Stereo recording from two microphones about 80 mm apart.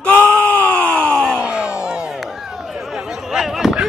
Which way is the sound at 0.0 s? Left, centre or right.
Left.